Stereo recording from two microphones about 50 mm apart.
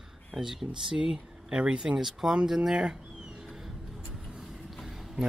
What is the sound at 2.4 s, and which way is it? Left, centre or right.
Speech, centre.